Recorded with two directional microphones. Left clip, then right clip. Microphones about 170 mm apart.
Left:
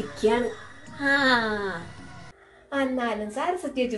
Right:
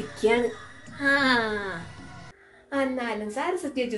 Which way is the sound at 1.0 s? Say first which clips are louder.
Left 1 dB; 20° right (ahead or behind).